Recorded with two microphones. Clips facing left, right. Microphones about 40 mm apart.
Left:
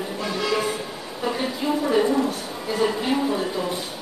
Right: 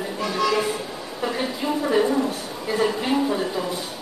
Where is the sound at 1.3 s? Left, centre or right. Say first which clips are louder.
Left 1 dB; centre.